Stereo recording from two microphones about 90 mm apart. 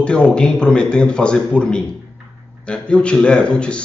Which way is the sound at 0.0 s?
10° left (ahead or behind).